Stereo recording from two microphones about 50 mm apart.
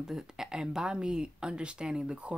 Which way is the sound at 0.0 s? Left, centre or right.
Centre.